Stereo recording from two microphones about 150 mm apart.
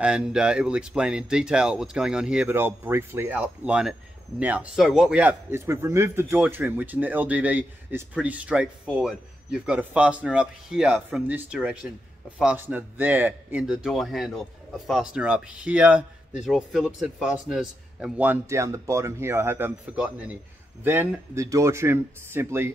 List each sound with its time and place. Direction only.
0.0 s a man's voice: 5° right (ahead or behind)